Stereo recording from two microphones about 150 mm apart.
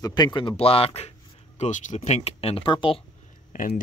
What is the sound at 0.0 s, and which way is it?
Speech, 25° left (ahead or behind).